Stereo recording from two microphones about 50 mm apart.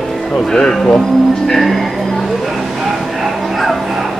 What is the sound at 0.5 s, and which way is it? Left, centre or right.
Speech, centre.